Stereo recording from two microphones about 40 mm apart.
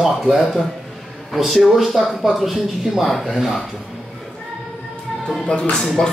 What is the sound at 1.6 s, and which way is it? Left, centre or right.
Speech, centre.